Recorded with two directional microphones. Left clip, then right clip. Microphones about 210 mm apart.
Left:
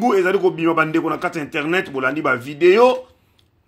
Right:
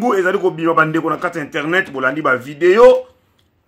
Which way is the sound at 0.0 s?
25° left (ahead or behind).